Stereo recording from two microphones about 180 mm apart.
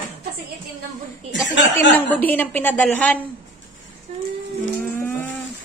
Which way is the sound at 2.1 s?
10° left (ahead or behind).